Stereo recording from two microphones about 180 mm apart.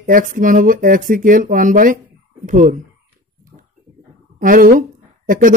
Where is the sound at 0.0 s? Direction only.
50° right (ahead or behind).